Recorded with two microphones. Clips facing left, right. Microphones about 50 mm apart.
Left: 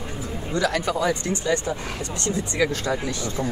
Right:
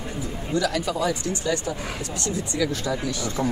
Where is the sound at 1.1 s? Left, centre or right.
Left.